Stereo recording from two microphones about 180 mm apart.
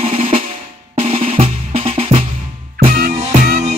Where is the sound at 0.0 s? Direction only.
35° right (ahead or behind).